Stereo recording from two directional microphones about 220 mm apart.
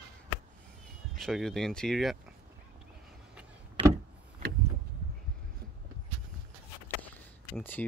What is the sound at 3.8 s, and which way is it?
Vehicle, 20° right (ahead or behind).